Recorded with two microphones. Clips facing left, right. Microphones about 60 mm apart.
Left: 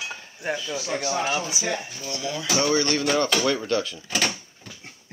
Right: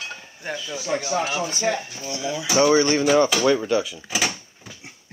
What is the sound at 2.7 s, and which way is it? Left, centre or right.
Speech, right.